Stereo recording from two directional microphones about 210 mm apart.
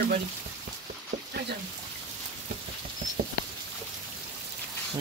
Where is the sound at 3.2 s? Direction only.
40° right (ahead or behind).